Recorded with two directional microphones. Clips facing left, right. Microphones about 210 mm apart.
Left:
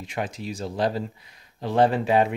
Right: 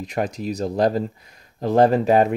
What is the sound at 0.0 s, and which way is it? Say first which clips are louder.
Speech: right 6 dB; 40° right (ahead or behind).